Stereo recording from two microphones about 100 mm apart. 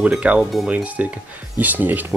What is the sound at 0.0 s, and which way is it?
Speech, 10° right (ahead or behind).